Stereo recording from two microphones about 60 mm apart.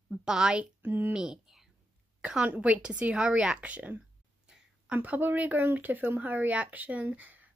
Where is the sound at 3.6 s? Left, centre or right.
Right.